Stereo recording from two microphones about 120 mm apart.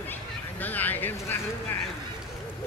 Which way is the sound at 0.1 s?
15° left (ahead or behind).